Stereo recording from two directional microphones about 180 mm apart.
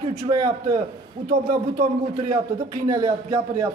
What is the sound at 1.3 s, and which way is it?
Speech, 55° right (ahead or behind).